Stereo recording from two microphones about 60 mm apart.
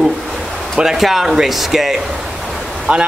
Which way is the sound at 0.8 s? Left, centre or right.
Centre.